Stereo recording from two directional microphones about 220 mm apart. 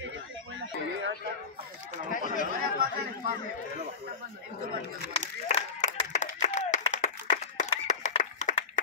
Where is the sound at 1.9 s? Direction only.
35° left (ahead or behind).